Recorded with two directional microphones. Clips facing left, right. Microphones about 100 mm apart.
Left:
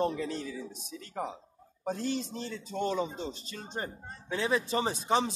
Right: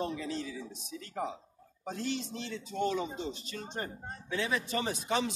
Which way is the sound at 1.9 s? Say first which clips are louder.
Left 3 dB; 40° left (ahead or behind).